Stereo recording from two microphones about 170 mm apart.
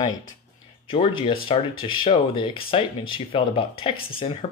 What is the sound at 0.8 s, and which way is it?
Speech, 35° left (ahead or behind).